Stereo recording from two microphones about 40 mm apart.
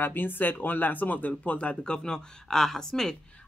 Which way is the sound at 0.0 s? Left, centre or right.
Left.